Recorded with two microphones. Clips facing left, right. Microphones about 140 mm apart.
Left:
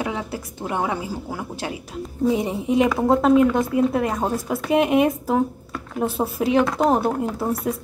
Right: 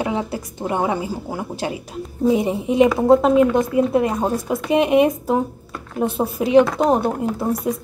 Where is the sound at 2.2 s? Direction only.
5° right (ahead or behind).